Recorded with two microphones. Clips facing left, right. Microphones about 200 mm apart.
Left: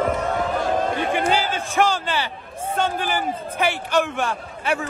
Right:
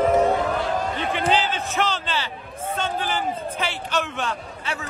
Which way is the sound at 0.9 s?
50° left (ahead or behind).